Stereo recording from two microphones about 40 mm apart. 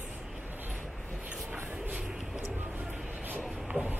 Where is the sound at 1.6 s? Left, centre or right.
Right.